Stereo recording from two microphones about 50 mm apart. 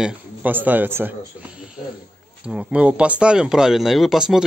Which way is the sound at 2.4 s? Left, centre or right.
Right.